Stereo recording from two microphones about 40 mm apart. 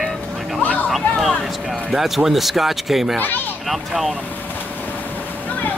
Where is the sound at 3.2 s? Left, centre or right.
Left.